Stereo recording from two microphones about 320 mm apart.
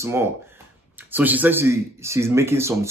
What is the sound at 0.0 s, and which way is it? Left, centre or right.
Speech, centre.